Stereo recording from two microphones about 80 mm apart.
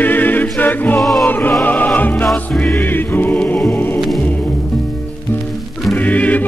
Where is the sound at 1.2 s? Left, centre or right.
Left.